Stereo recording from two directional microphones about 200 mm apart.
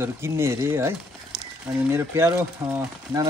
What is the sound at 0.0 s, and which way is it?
Speech, 15° right (ahead or behind).